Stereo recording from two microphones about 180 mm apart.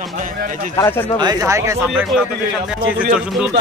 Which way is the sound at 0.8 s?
15° left (ahead or behind).